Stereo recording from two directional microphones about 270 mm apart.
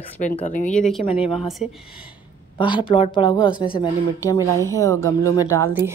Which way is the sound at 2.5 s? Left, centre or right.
Centre.